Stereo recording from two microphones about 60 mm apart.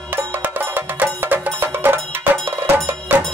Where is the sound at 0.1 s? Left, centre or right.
Right.